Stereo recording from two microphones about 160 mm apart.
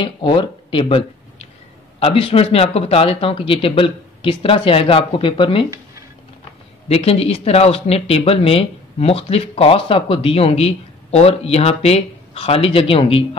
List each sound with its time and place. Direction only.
0.0 s speech: 30° left (ahead or behind)
6.9 s speech: 40° left (ahead or behind)